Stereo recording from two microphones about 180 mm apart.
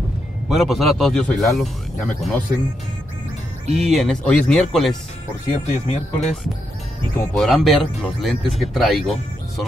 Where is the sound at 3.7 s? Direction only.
Centre (ahead or behind).